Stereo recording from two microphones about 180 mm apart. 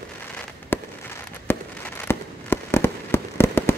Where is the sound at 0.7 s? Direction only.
10° left (ahead or behind).